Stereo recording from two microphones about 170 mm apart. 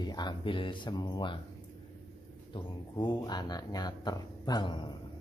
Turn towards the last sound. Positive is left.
turn(degrees=25)  # may be behind; listen again after turning